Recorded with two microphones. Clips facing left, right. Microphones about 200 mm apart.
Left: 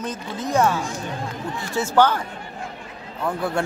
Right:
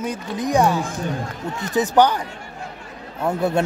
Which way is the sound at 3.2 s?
25° right (ahead or behind).